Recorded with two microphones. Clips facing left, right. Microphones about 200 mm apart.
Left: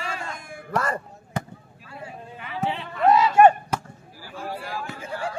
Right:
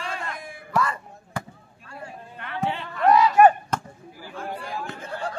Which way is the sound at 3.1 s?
25° left (ahead or behind).